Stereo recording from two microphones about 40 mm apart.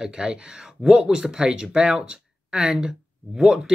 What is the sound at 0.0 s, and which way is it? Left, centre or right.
Speech, centre.